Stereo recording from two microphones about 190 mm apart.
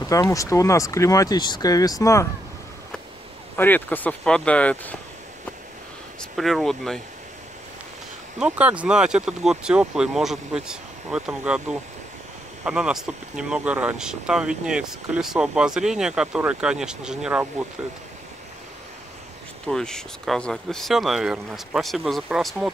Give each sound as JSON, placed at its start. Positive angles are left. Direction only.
{"t": 0.0, "sound": "speech", "side_deg": 20}
{"t": 3.5, "sound": "speech", "side_deg": 10}
{"t": 6.3, "sound": "speech", "side_deg": 0}
{"t": 8.4, "sound": "speech", "side_deg": -5}
{"t": 12.6, "sound": "speech", "side_deg": -5}
{"t": 19.6, "sound": "speech", "side_deg": 5}